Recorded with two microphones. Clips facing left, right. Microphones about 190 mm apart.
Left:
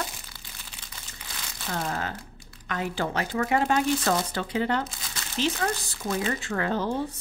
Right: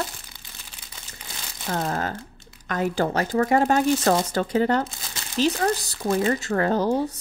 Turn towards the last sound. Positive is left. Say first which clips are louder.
# right 6 dB
turn(degrees=-40)  # may be behind; listen again after turning